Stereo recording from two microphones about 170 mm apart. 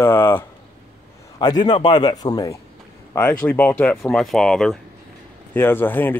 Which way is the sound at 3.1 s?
10° left (ahead or behind).